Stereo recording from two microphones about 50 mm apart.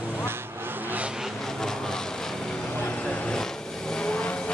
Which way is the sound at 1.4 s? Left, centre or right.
Centre.